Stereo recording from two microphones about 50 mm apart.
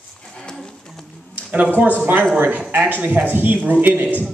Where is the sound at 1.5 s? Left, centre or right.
Right.